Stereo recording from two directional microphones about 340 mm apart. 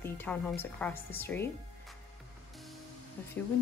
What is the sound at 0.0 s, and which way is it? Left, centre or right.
A woman's voice, centre.